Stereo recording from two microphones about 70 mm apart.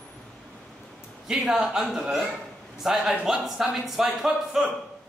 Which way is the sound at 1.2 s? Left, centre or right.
Centre.